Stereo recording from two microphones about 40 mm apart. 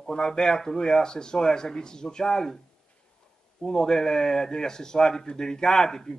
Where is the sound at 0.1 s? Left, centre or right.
Centre.